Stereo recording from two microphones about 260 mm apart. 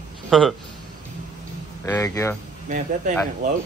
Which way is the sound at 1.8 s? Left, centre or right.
Centre.